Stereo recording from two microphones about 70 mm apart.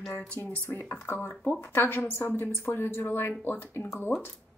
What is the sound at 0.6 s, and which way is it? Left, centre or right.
A woman's voice, left.